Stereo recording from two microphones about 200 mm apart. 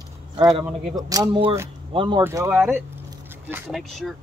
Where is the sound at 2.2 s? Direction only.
15° right (ahead or behind).